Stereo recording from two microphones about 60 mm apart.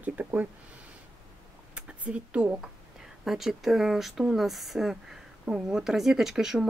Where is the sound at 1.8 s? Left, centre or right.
Right.